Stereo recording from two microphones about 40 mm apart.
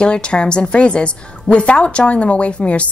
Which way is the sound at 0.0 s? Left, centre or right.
Left.